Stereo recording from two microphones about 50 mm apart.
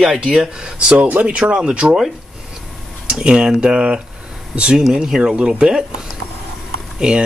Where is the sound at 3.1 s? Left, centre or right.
Centre.